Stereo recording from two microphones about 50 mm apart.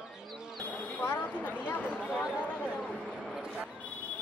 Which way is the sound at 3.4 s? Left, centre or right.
Centre.